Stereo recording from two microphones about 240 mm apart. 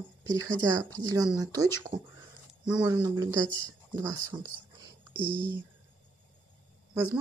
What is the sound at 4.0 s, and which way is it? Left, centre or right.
Speech, centre.